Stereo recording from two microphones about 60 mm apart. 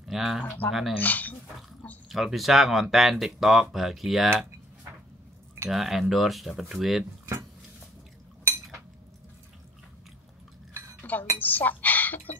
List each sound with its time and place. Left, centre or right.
0.0 s a sound: centre
0.7 s speech: centre
0.9 s speech: left
2.0 s speech: centre
5.7 s speech: centre
11.0 s chink: left